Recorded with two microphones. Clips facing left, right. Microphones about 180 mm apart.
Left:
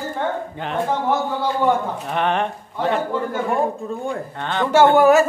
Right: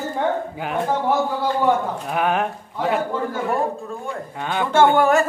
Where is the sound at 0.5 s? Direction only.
5° right (ahead or behind).